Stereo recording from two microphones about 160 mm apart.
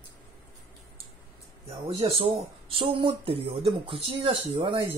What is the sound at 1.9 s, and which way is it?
Speech, 35° right (ahead or behind).